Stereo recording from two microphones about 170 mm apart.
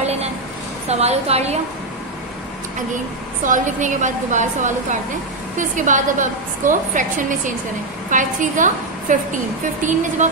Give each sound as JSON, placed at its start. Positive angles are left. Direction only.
{"t": 0.0, "sound": "a sound", "side_deg": -40}
{"t": 0.8, "sound": "a woman's voice", "side_deg": -40}
{"t": 3.4, "sound": "a woman's voice", "side_deg": -50}